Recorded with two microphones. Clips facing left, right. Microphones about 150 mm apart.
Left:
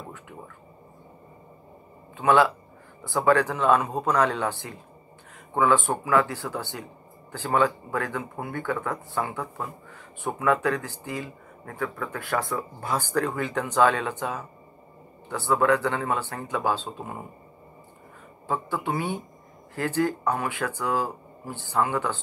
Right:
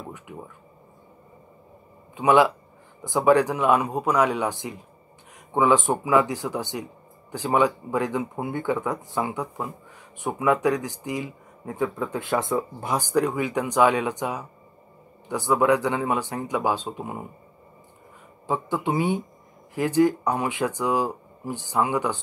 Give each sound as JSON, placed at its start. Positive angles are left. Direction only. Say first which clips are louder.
{"t": 2.1, "sound": "speech", "louder": "right 2 dB", "side_deg": -15}
{"t": 18.5, "sound": "speech", "louder": "right 3 dB", "side_deg": -20}